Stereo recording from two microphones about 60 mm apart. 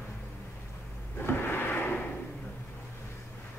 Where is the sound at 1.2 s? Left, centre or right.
Left.